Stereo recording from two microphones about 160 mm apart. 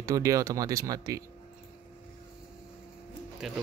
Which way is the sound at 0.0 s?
20° right (ahead or behind).